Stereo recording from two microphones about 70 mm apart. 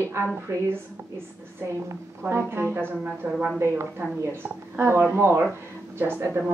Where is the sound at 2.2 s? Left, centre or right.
Right.